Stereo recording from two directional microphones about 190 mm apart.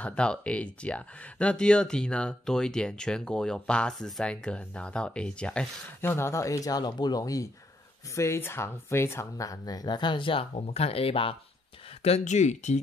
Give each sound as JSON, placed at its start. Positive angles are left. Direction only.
{"t": 0.0, "sound": "speech", "side_deg": 5}